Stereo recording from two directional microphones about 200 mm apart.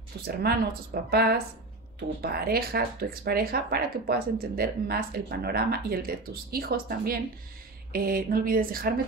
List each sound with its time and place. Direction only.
0.2 s speech: 50° right (ahead or behind)